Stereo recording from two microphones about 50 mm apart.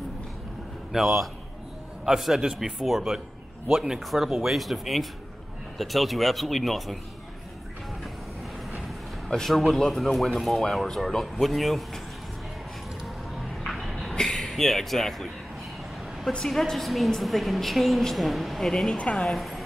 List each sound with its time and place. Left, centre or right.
0.9 s a woman's voice: centre
4.0 s a woman's voice: centre
9.3 s a woman's voice: centre
13.0 s music: centre
14.1 s speech: centre
16.3 s a woman's voice: centre
18.9 s speech: left
19.2 s speech: centre